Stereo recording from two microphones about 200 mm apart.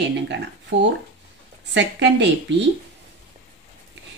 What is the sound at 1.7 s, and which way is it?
Speech, 60° right (ahead or behind).